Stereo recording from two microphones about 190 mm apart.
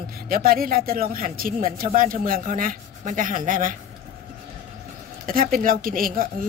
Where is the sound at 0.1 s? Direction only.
50° right (ahead or behind).